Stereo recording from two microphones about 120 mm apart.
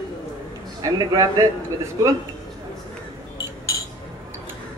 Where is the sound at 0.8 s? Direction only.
30° right (ahead or behind).